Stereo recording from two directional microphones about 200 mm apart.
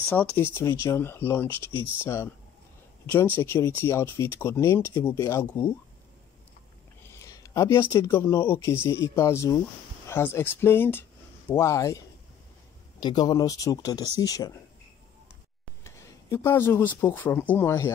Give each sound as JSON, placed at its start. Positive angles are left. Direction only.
{"t": 0.1, "sound": "speech", "side_deg": 10}
{"t": 3.1, "sound": "speech", "side_deg": 10}
{"t": 7.1, "sound": "speech", "side_deg": 15}
{"t": 13.0, "sound": "speech", "side_deg": 20}
{"t": 15.8, "sound": "speech", "side_deg": 15}